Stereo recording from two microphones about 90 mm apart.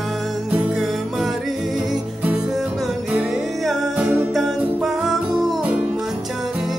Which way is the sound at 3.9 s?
15° right (ahead or behind).